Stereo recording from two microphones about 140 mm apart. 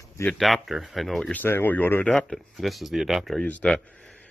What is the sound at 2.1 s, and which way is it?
Speech, centre (ahead or behind).